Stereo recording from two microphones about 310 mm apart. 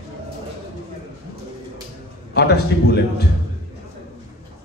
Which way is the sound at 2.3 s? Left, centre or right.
Left.